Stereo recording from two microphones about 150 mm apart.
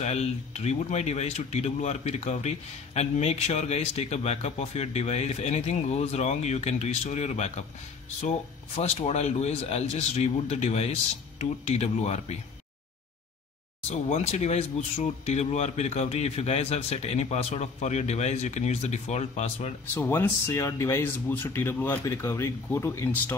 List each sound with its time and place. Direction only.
0.0 s speech: 50° left (ahead or behind)
13.8 s speech: 45° left (ahead or behind)
19.9 s speech: 15° left (ahead or behind)